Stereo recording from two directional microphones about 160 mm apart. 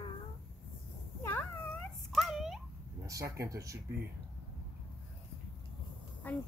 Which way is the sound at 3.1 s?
20° right (ahead or behind).